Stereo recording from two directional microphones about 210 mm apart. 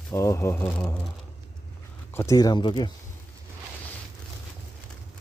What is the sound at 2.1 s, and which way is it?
Speech, 15° left (ahead or behind).